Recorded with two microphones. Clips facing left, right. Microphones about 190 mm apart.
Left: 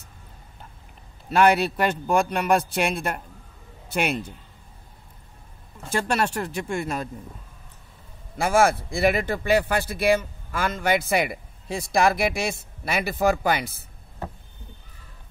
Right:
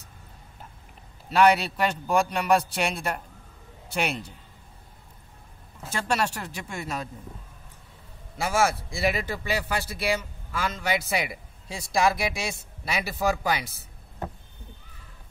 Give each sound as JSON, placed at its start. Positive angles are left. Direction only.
{"t": 1.3, "sound": "speech", "side_deg": 50}
{"t": 5.9, "sound": "speech", "side_deg": 55}
{"t": 8.4, "sound": "speech", "side_deg": 55}